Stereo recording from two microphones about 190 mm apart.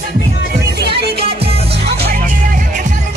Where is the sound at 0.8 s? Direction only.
60° right (ahead or behind).